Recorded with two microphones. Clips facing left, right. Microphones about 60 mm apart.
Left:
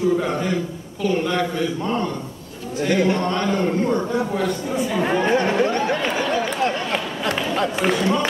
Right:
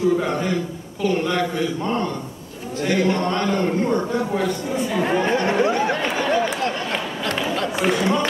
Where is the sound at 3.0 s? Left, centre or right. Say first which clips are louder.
Right 1 dB; centre.